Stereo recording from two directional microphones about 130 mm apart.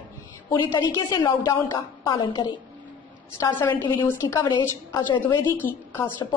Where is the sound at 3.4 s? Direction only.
20° left (ahead or behind).